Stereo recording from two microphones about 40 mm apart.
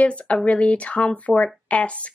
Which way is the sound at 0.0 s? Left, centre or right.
Left.